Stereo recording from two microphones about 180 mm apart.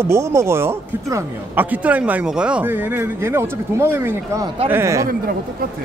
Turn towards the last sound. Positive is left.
turn(degrees=-15)  # may be behind; listen again after turning